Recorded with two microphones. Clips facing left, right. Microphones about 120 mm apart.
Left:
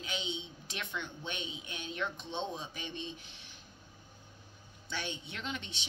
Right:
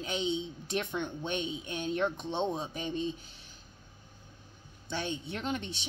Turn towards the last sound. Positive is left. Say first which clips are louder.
# right 6 dB
turn(degrees=-45)  # may be behind; listen again after turning